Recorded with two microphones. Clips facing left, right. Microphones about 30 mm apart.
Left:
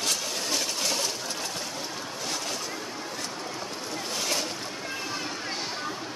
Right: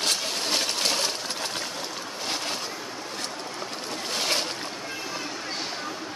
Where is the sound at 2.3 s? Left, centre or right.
Right.